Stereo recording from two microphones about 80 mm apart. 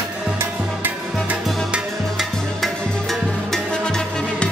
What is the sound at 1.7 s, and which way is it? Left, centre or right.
Music, centre.